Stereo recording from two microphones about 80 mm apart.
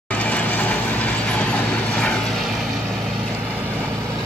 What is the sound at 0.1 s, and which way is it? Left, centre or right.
Vehicle, centre.